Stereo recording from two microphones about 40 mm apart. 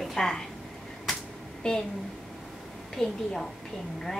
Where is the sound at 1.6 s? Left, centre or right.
Centre.